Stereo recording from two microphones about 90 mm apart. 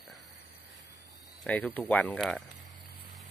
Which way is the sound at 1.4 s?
15° left (ahead or behind).